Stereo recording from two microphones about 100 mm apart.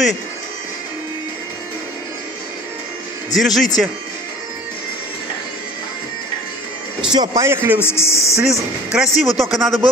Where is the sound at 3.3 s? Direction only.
Centre (ahead or behind).